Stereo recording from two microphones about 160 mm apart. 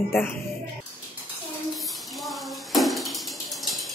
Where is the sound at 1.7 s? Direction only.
Centre (ahead or behind).